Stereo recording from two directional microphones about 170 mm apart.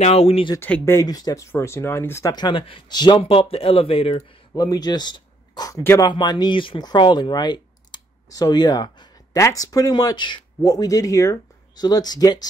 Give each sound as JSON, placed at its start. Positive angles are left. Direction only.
{"t": 0.0, "sound": "speech", "side_deg": 35}
{"t": 0.6, "sound": "speech", "side_deg": 10}